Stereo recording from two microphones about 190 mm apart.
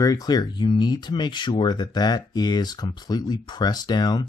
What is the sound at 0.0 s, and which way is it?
Speech, 20° left (ahead or behind).